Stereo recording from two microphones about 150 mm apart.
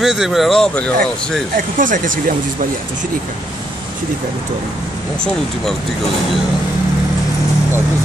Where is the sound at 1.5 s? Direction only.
65° right (ahead or behind).